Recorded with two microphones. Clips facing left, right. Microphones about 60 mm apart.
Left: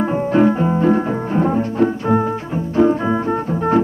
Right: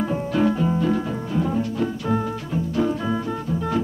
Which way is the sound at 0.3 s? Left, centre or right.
Left.